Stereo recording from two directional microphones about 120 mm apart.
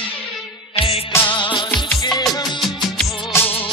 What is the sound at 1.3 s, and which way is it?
Music, 40° left (ahead or behind).